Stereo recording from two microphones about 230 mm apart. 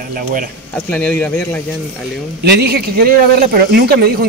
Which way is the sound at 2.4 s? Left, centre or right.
Right.